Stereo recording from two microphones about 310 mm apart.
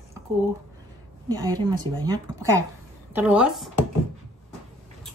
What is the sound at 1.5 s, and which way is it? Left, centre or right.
A woman's voice, centre.